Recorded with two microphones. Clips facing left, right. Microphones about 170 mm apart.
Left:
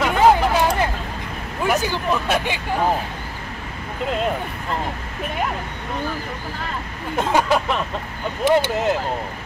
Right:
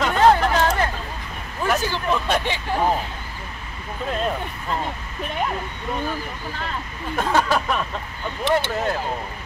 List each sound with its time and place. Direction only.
0.0 s hubbub: 10° left (ahead or behind)
1.6 s speech: 10° left (ahead or behind)
7.2 s speech: 20° left (ahead or behind)